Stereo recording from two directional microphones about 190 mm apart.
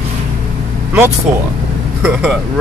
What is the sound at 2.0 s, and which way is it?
Speech, 5° right (ahead or behind).